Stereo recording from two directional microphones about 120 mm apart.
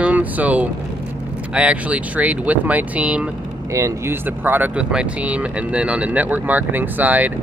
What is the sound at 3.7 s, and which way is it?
Speech, 25° right (ahead or behind).